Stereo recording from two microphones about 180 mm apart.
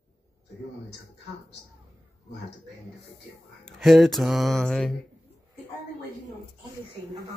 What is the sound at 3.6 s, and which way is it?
Speech, centre (ahead or behind).